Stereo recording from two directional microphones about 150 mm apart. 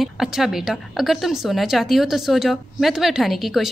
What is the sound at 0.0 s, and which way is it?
A woman's voice, centre (ahead or behind).